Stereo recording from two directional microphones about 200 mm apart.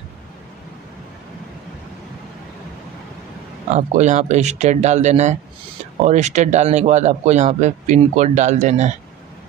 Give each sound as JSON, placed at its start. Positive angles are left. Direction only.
{"t": 3.7, "sound": "a man's voice", "side_deg": -35}